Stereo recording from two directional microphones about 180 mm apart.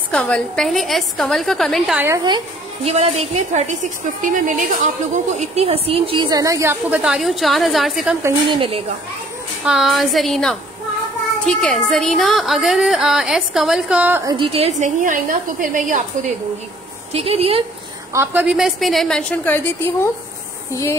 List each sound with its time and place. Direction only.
0.1 s a woman's voice: 5° left (ahead or behind)
2.0 s a woman's voice: 15° right (ahead or behind)
8.5 s a woman's voice: 30° right (ahead or behind)
9.7 s a woman's voice: centre (ahead or behind)
14.3 s a woman's voice: 30° right (ahead or behind); by 16.3 s 45° right (ahead or behind)
17.1 s a woman's voice: 35° right (ahead or behind)
18.1 s a woman's voice: 10° right (ahead or behind); by 20.1 s 10° left (ahead or behind)